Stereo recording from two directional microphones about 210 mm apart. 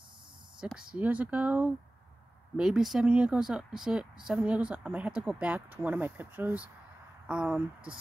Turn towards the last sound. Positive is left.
turn(degrees=-5)  # may be behind; listen again after turning